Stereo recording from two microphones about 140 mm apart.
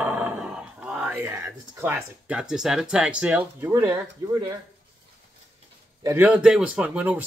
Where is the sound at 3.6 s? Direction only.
20° right (ahead or behind).